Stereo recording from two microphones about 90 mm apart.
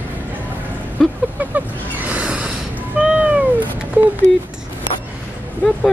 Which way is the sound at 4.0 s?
20° right (ahead or behind).